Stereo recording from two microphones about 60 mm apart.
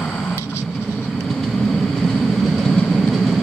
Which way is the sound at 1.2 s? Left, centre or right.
Centre.